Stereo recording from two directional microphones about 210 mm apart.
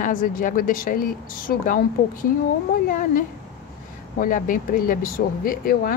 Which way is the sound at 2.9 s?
40° left (ahead or behind).